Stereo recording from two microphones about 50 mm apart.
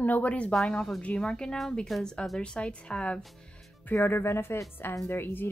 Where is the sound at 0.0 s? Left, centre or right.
Left.